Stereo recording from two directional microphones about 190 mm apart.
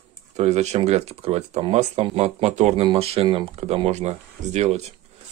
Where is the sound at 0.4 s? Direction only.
35° right (ahead or behind).